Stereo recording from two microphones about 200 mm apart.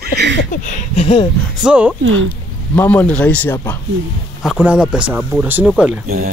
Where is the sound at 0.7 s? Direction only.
30° left (ahead or behind).